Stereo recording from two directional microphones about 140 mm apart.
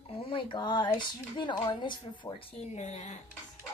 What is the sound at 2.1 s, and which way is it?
Speech, 35° left (ahead or behind).